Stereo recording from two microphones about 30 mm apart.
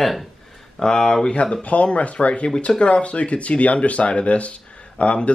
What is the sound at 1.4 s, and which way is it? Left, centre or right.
Speech, left.